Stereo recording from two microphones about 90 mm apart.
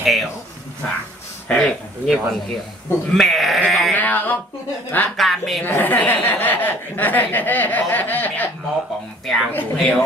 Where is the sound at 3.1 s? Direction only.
Centre (ahead or behind).